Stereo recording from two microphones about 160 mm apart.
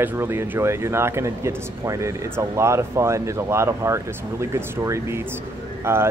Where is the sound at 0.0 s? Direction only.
15° right (ahead or behind).